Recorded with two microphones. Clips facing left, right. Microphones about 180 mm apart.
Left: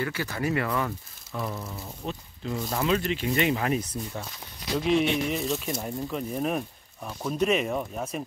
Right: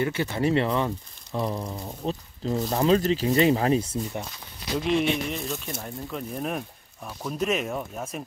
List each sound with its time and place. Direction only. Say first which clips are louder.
0.0 s speech: right 4 dB; 25° right (ahead or behind)
4.7 s speech: even; centre (ahead or behind)